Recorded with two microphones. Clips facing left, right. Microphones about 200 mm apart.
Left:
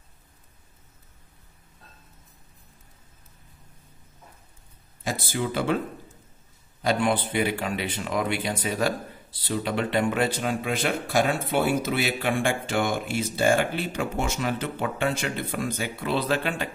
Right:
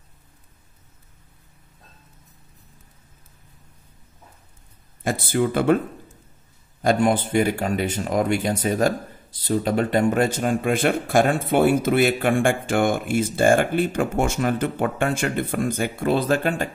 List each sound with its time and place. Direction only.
5.0 s speech: 55° right (ahead or behind)
6.8 s speech: 45° right (ahead or behind)